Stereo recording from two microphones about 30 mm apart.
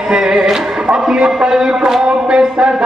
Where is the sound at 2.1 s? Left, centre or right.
Right.